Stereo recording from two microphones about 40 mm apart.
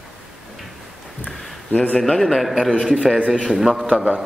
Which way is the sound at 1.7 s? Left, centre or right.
Left.